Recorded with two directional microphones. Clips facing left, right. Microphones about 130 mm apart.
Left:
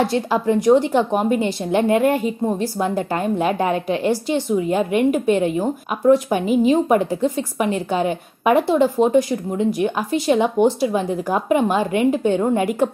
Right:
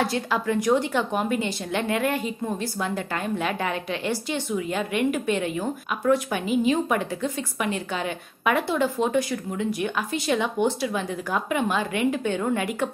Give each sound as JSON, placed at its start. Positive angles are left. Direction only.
{"t": 0.0, "sound": "a woman's voice", "side_deg": 35}